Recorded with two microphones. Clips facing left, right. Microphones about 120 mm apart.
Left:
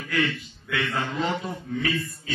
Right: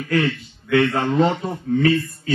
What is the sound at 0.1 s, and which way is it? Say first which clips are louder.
A man's voice: right 6 dB; 40° right (ahead or behind).